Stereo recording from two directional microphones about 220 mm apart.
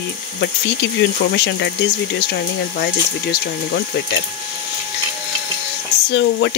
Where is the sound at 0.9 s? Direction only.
50° left (ahead or behind).